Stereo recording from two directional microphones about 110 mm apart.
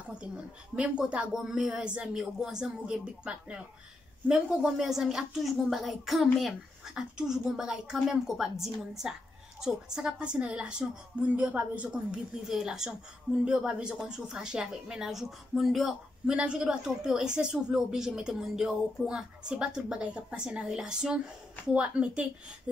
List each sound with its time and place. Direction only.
0.7 s speech: 10° right (ahead or behind)